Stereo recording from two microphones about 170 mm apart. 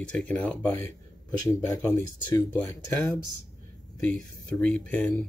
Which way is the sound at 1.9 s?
20° left (ahead or behind).